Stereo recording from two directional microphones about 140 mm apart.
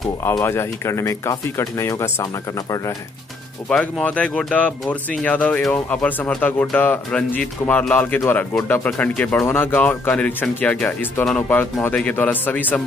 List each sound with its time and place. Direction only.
0.2 s speech: 20° left (ahead or behind)
3.6 s speech: 10° left (ahead or behind)